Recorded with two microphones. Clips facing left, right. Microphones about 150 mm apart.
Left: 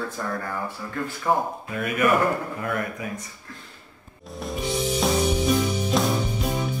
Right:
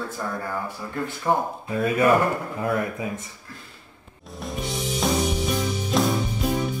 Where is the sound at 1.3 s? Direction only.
5° right (ahead or behind).